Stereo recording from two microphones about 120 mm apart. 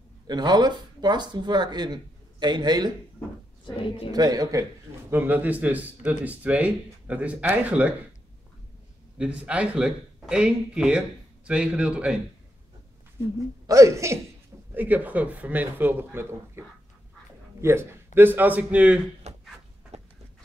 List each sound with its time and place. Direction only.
0.3 s speech: 35° right (ahead or behind)
3.6 s a woman's voice: 45° left (ahead or behind)
4.1 s speech: 35° right (ahead or behind)
5.1 s speech: 15° right (ahead or behind)
9.2 s speech: 10° right (ahead or behind)
13.7 s speech: 25° right (ahead or behind)
14.7 s speech: 15° right (ahead or behind)
19.2 s a sound: 65° right (ahead or behind)